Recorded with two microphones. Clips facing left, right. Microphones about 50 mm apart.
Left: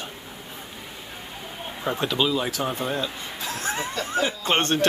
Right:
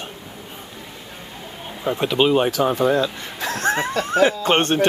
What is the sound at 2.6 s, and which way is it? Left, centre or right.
Speech, right.